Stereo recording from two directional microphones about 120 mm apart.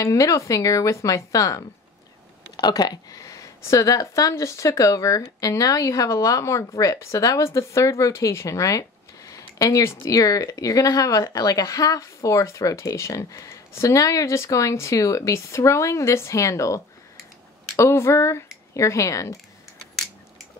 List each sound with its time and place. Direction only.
0.0 s speech: 25° left (ahead or behind)